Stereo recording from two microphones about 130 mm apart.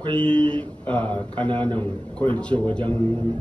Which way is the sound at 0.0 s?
40° right (ahead or behind).